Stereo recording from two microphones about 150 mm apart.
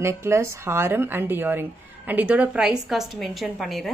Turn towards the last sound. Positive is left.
turn(degrees=0)  # may be behind; listen again after turning